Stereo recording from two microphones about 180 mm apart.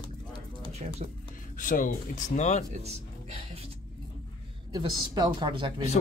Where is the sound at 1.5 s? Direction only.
45° left (ahead or behind).